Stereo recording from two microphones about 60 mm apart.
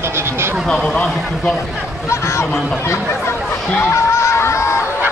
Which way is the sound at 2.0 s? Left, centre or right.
Left.